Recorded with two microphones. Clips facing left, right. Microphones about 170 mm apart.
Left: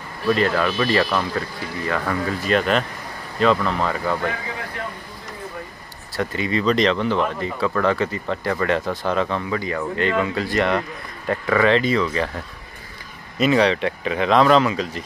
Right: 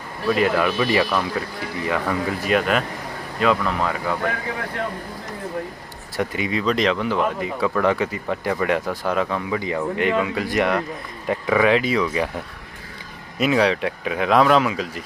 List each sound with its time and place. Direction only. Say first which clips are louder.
0.3 s speech: even; 10° right (ahead or behind)
6.1 s speech: left 1 dB; 15° right (ahead or behind)
9.6 s speech: right 1 dB; 15° right (ahead or behind)
13.4 s speech: left 1 dB; 5° right (ahead or behind)